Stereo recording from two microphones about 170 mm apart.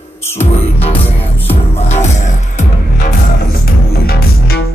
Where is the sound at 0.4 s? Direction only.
35° left (ahead or behind).